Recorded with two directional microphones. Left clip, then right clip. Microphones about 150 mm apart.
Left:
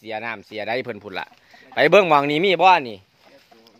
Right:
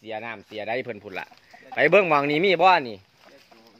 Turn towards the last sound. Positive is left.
turn(degrees=15)  # may be behind; listen again after turning